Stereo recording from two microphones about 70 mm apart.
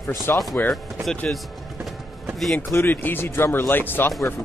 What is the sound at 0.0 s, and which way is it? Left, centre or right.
Speech, left.